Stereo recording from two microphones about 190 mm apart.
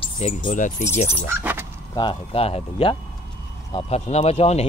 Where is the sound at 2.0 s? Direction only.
30° left (ahead or behind).